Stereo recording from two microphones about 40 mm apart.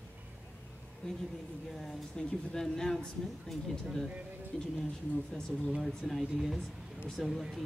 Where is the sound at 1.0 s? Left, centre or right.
Centre.